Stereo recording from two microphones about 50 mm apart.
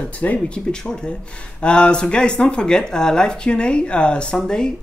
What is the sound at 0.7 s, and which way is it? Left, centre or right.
Speech, centre.